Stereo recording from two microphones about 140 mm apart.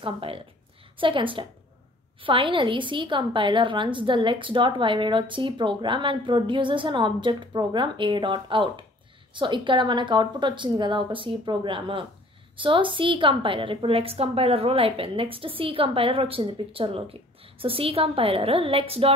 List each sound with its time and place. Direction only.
0.0 s a woman's voice: 40° right (ahead or behind)